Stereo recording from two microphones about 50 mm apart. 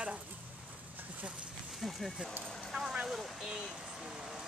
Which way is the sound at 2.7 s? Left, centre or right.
Centre.